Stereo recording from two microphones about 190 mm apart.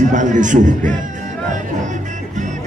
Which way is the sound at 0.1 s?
40° right (ahead or behind).